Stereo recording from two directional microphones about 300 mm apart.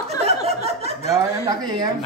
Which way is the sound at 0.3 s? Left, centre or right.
Centre.